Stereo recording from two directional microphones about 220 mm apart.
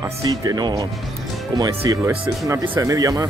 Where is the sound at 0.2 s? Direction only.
15° right (ahead or behind).